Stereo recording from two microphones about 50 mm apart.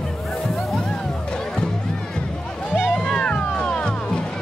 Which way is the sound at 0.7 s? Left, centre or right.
Centre.